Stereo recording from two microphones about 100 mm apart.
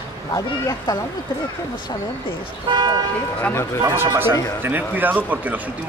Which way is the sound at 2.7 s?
45° right (ahead or behind).